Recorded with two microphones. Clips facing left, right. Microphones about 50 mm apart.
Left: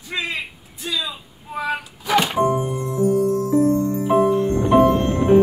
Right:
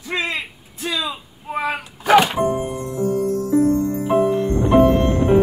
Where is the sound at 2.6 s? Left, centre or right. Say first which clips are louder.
Left 2 dB; right.